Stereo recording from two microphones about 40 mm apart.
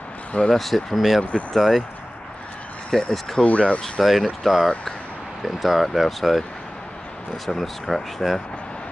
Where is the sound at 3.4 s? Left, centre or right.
Left.